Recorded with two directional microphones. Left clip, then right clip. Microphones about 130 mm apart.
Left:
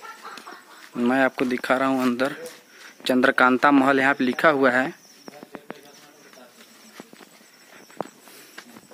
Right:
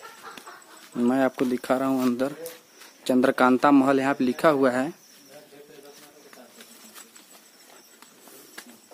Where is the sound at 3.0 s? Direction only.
20° right (ahead or behind).